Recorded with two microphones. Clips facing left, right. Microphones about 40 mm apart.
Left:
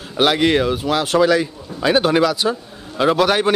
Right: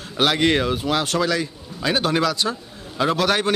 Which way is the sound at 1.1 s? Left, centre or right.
Centre.